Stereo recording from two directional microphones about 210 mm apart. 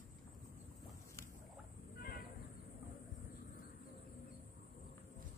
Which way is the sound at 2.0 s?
45° left (ahead or behind).